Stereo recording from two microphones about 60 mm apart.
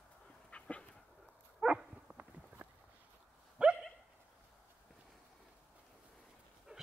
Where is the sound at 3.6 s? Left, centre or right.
Centre.